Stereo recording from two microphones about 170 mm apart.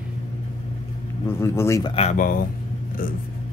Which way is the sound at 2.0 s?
45° left (ahead or behind).